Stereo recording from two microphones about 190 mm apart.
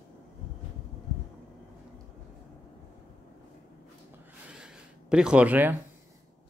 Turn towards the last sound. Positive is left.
turn(degrees=-10)  # may be behind; listen again after turning